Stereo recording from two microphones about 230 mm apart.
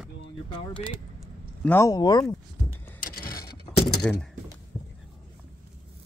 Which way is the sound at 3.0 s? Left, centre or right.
Left.